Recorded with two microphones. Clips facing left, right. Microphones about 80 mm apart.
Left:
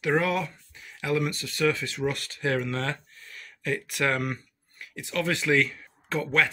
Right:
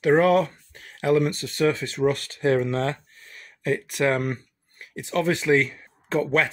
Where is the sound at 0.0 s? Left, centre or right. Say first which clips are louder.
Right 7 dB; right.